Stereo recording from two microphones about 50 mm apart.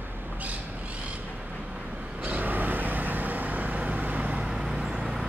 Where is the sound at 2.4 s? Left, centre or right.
Right.